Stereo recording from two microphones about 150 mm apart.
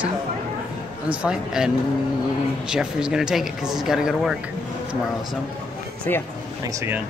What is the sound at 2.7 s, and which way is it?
Speech, 5° right (ahead or behind).